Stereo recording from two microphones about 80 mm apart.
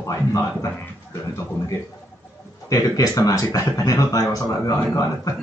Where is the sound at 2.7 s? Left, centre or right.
Left.